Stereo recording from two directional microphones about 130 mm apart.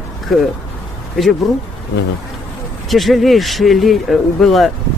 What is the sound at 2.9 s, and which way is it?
Speech, centre (ahead or behind).